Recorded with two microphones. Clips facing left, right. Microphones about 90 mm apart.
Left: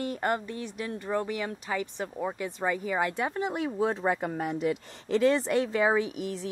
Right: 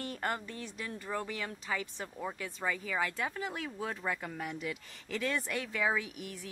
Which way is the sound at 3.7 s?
30° left (ahead or behind).